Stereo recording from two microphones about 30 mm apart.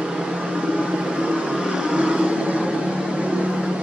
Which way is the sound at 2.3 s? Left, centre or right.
Right.